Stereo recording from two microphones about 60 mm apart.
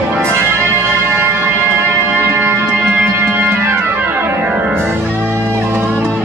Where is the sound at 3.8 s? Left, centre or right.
Right.